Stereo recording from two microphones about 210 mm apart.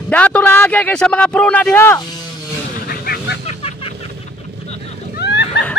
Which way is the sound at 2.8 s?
45° left (ahead or behind).